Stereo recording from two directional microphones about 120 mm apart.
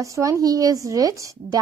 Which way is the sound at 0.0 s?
25° right (ahead or behind).